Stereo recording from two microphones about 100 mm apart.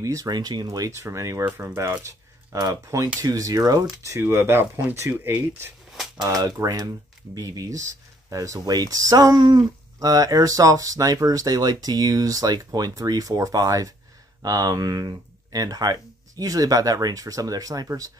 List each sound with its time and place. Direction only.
0.0 s speech: 35° right (ahead or behind)
6.2 s speech: 40° right (ahead or behind)